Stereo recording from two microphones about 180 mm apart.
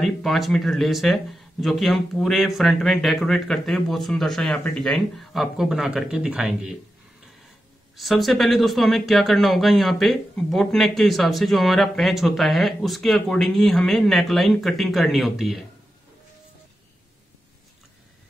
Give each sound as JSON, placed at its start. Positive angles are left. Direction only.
{"t": 0.0, "sound": "speech", "side_deg": 0}
{"t": 7.9, "sound": "speech", "side_deg": 0}